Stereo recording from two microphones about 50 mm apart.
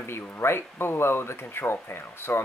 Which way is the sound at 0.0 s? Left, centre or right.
Left.